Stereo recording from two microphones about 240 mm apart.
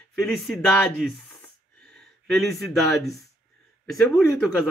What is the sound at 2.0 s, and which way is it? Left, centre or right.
Speech, centre.